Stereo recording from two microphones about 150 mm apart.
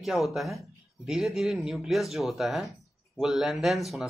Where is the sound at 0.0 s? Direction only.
Centre (ahead or behind).